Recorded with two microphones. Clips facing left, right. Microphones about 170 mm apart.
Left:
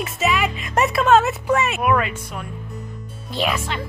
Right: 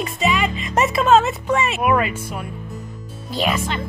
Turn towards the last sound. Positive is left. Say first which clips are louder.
# right 2 dB
turn(degrees=0)  # may be behind; listen again after turning